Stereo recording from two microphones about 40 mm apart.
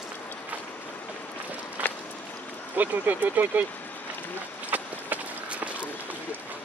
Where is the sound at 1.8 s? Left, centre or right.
Right.